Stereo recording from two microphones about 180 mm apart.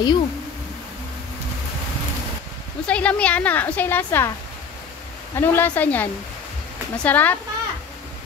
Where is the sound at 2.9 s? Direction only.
5° left (ahead or behind).